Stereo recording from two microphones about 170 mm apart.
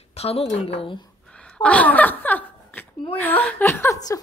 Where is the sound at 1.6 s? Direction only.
10° left (ahead or behind).